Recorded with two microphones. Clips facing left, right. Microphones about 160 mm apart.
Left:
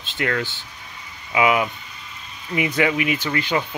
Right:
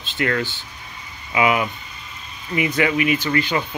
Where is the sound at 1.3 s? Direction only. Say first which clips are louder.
Even; 15° left (ahead or behind).